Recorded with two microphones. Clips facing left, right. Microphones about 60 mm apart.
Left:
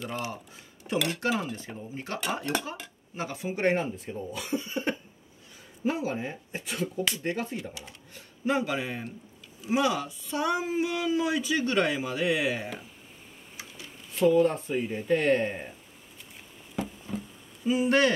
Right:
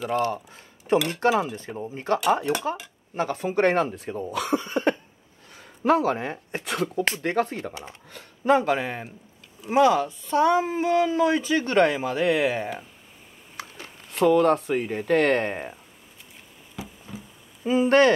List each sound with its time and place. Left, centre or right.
0.1 s a sound: right
0.9 s speech: centre
1.3 s cutlery: centre
1.8 s speech: right
3.2 s speech: right
5.9 s speech: right
7.1 s speech: right
7.3 s speech: right
8.5 s speech: right
13.6 s speech: right
16.7 s a sound: centre
17.6 s speech: right